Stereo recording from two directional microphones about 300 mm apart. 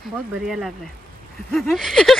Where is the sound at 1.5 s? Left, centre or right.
Centre.